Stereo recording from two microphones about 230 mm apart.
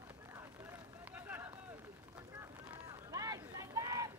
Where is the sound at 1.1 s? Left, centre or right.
Centre.